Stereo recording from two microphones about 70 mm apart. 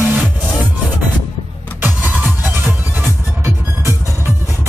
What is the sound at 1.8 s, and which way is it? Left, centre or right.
Music, right.